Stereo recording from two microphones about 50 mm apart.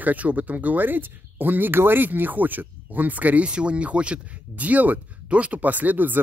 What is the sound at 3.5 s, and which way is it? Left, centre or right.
Speech, right.